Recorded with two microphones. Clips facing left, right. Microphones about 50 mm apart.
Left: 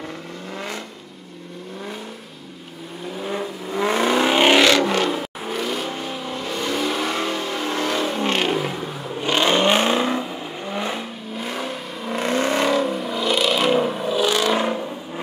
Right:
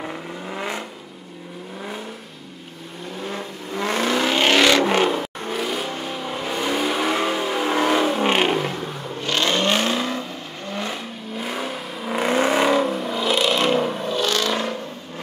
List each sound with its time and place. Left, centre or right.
0.6 s vehicle: centre
3.2 s vehicle: centre
4.7 s vehicle: centre
5.1 s vehicle: centre
8.5 s vehicle: centre
9.2 s vehicle: centre
11.3 s vehicle: centre